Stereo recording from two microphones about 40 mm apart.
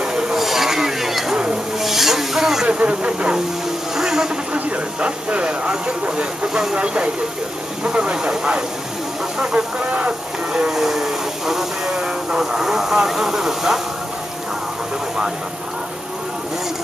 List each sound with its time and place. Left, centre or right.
0.0 s a sound: right
0.4 s a sound: centre
1.8 s snake: centre
2.7 s speech: right
3.9 s music: centre
4.6 s speech: right
9.8 s speech: right
10.5 s speech: centre
12.0 s speech: right